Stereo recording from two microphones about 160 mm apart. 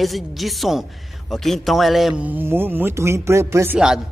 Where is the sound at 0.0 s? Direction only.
Centre (ahead or behind).